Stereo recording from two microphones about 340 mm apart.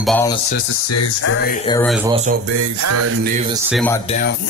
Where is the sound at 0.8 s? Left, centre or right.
Left.